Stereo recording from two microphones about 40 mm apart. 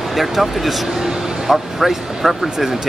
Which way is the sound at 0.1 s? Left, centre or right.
Centre.